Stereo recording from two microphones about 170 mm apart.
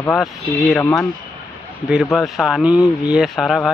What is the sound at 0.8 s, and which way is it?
Speech, 15° left (ahead or behind).